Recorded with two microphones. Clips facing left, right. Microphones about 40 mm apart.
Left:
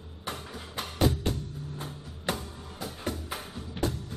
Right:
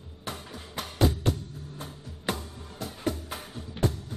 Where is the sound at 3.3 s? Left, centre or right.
Centre.